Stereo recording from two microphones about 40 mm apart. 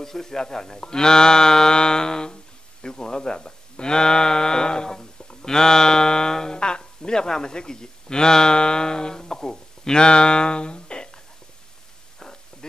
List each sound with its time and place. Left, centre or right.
0.0 s speech: centre